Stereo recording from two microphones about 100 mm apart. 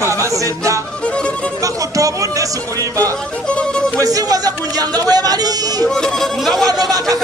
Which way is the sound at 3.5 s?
10° left (ahead or behind).